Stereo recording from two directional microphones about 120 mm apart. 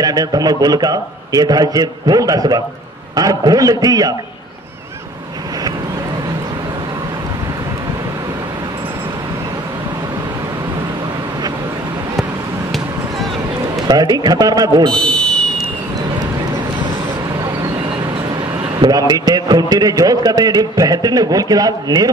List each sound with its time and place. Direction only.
0.0 s a man's voice: 30° right (ahead or behind)
13.8 s a man's voice: 35° right (ahead or behind)
14.9 s a sound: 5° left (ahead or behind)
18.8 s a man's voice: 35° right (ahead or behind)